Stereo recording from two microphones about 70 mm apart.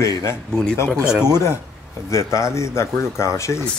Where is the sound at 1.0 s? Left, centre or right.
Centre.